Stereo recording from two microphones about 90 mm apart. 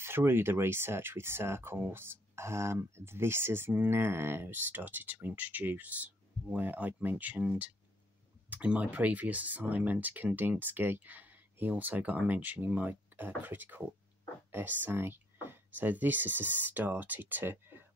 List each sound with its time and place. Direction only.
0.0 s speech: 25° right (ahead or behind)